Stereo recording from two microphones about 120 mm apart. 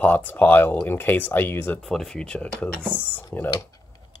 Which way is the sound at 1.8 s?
5° left (ahead or behind).